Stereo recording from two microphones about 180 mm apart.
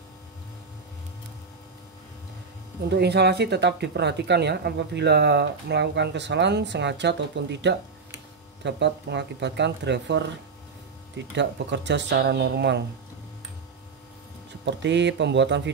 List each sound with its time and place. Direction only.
2.9 s speech: 70° right (ahead or behind)
11.3 s speech: 75° right (ahead or behind)
14.6 s speech: 80° right